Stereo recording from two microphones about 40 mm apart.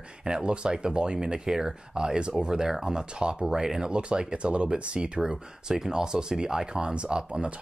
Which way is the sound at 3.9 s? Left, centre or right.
Right.